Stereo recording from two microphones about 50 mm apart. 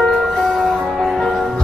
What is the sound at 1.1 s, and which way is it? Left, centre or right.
Music, centre.